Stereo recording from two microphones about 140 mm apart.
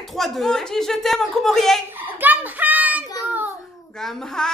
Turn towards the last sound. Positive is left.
turn(degrees=5)  # may be behind; listen again after turning